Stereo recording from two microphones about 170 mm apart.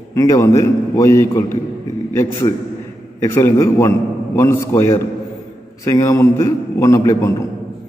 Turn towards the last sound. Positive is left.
turn(degrees=15)  # may be behind; listen again after turning